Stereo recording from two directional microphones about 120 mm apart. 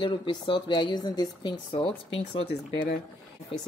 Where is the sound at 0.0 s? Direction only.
40° left (ahead or behind).